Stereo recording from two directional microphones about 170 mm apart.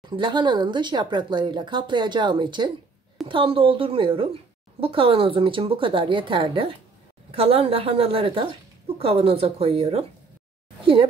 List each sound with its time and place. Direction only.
0.1 s a woman's voice: 25° right (ahead or behind)